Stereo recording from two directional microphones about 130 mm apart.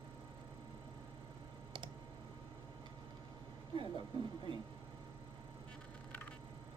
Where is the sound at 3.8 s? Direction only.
40° right (ahead or behind).